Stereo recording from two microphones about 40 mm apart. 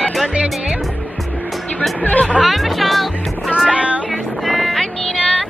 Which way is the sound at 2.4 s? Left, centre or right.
Centre.